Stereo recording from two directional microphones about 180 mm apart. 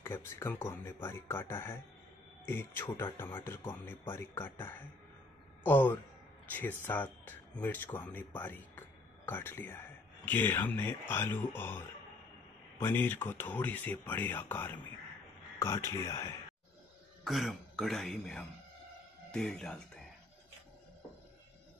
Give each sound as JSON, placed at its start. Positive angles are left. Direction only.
{"t": 0.0, "sound": "speech", "side_deg": 15}
{"t": 17.2, "sound": "speech", "side_deg": 0}